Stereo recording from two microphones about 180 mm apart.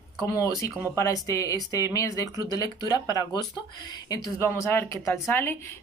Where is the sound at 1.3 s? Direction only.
20° left (ahead or behind).